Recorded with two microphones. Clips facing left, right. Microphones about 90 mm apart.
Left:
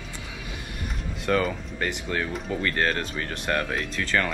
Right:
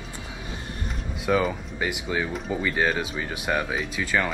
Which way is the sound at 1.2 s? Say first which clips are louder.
Right 1 dB; 5° right (ahead or behind).